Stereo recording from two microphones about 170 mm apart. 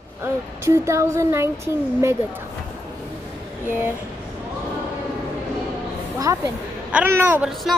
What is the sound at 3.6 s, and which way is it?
Speech, 10° right (ahead or behind).